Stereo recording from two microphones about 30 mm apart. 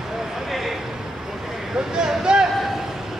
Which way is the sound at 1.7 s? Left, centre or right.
Right.